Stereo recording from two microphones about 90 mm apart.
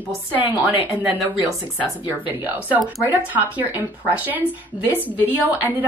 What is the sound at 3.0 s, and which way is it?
A woman's voice, 20° right (ahead or behind).